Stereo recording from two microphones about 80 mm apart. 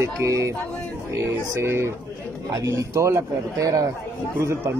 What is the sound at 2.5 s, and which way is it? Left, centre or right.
A man's voice, right.